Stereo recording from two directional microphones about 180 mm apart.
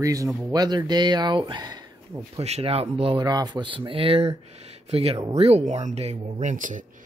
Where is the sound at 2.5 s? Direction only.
35° right (ahead or behind).